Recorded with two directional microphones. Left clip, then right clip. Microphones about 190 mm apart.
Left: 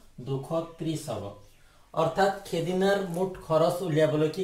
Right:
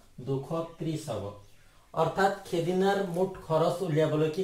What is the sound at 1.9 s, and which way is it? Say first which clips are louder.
Speech: left 2 dB; 5° right (ahead or behind).